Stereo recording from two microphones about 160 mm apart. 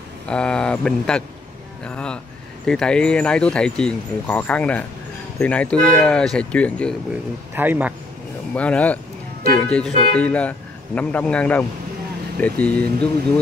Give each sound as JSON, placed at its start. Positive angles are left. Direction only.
{"t": 0.3, "sound": "speech", "side_deg": 5}
{"t": 7.5, "sound": "a man's voice", "side_deg": -10}
{"t": 8.5, "sound": "speech", "side_deg": 10}